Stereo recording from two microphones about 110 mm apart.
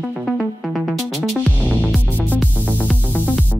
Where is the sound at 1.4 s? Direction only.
5° left (ahead or behind).